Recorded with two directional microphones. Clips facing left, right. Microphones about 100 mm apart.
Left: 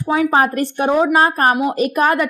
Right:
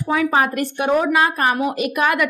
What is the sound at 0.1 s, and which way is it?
A woman's voice, 30° left (ahead or behind).